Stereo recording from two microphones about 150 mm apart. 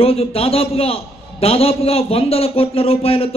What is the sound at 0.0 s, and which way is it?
A man's voice, 40° left (ahead or behind).